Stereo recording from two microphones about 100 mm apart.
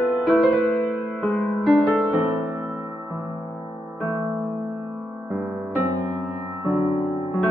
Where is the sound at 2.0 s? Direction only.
20° right (ahead or behind).